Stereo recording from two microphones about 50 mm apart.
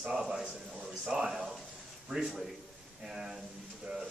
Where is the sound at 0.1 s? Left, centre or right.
Centre.